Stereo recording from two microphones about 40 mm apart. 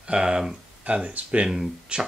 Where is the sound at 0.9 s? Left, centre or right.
Right.